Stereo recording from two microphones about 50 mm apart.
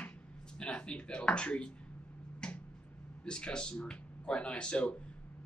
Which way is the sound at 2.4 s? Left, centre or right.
Centre.